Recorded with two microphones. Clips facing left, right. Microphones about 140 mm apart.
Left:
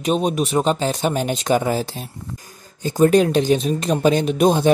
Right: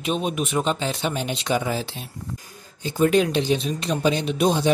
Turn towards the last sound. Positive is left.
turn(degrees=45)  # may be behind; listen again after turning